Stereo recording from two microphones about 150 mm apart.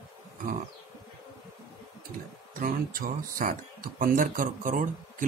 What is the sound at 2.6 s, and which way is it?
A man's voice, 70° right (ahead or behind).